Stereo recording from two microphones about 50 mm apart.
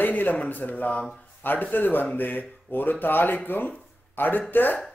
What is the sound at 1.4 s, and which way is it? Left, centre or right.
Speech, left.